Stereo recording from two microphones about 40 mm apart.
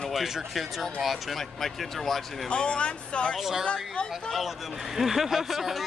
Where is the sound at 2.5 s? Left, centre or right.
Left.